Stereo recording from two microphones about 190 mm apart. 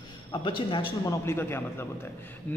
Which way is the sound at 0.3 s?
25° left (ahead or behind).